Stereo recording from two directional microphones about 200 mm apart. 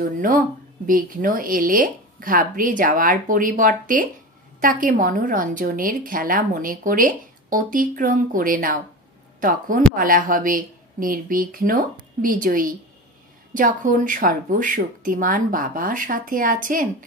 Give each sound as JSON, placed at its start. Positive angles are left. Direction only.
{"t": 0.8, "sound": "a woman's voice", "side_deg": -45}